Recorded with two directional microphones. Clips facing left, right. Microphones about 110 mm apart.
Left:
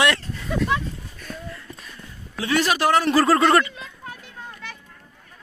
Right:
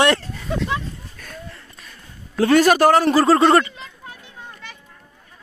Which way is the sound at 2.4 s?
50° right (ahead or behind).